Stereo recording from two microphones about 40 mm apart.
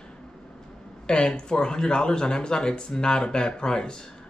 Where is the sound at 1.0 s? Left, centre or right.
Left.